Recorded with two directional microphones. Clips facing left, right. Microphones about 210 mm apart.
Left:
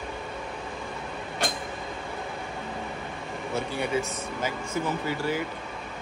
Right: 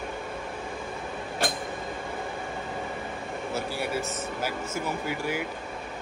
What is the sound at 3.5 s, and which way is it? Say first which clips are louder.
Speech: left 3 dB; 5° right (ahead or behind).